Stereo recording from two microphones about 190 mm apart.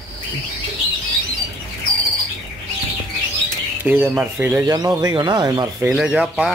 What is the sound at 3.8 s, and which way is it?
Speech, 10° right (ahead or behind).